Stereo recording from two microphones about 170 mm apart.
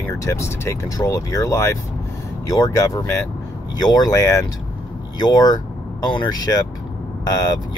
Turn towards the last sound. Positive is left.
turn(degrees=20)  # may be behind; listen again after turning